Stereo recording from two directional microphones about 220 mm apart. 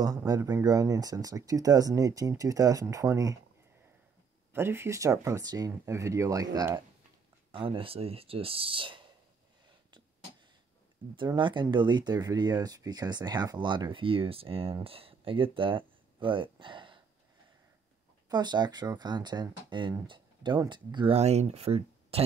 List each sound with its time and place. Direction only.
0.0 s speech: 15° right (ahead or behind)
4.5 s speech: 10° right (ahead or behind)
11.1 s speech: 20° right (ahead or behind)
18.3 s speech: 20° right (ahead or behind)